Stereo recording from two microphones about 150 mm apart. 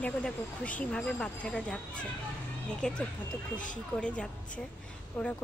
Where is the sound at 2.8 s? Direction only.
5° left (ahead or behind).